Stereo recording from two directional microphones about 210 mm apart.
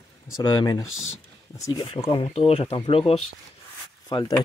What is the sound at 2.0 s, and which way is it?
Speech, 25° left (ahead or behind).